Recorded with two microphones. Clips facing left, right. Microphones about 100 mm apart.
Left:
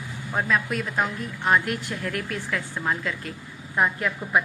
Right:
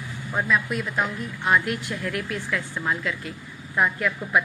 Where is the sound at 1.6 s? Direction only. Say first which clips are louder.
Right 1 dB; 40° left (ahead or behind).